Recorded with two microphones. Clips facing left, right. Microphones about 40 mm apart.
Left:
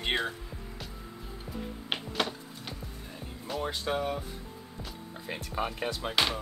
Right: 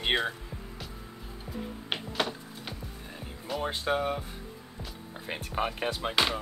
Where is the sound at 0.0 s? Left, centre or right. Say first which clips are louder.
Right 2 dB; centre.